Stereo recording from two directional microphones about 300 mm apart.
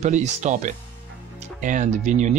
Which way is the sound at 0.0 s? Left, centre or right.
Right.